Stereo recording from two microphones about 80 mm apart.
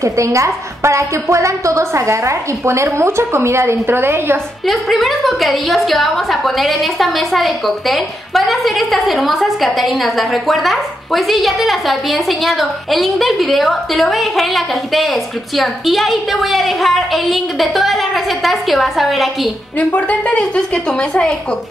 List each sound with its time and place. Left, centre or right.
0.0 s a woman's voice: right
4.6 s a woman's voice: centre
19.9 s speech: centre